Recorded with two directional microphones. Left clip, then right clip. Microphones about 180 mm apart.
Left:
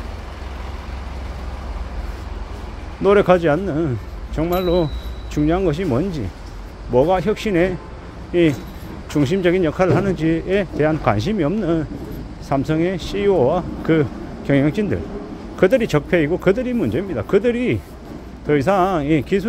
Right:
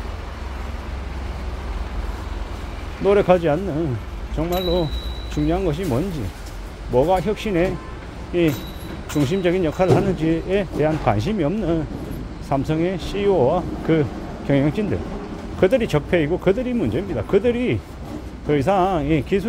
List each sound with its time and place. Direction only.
3.0 s speech: 25° left (ahead or behind)